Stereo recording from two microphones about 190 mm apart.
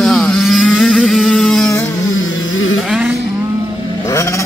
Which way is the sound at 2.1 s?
90° left.